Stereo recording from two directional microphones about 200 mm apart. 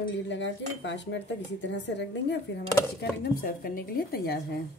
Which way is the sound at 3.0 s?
45° left (ahead or behind).